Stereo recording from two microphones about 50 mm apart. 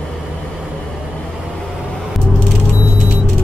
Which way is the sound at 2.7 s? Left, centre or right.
Right.